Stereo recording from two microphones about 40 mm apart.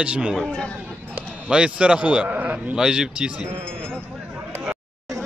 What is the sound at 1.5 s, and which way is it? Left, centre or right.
Speech, right.